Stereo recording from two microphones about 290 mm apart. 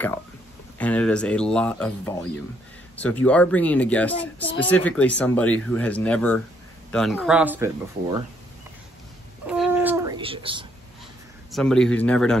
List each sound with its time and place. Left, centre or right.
0.7 s speech: centre
9.5 s a sound: centre
11.5 s speech: centre